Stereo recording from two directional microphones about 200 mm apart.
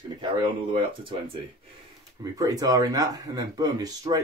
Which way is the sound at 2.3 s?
20° right (ahead or behind).